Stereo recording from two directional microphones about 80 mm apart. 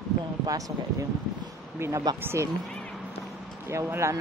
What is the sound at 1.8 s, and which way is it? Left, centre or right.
Speech, right.